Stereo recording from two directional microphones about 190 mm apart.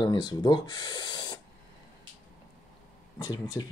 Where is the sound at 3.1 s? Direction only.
20° left (ahead or behind).